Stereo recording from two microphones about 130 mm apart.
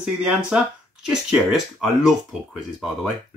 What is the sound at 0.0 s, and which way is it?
Speech, 10° right (ahead or behind).